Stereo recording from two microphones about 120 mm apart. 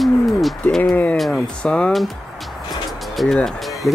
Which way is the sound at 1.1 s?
Centre (ahead or behind).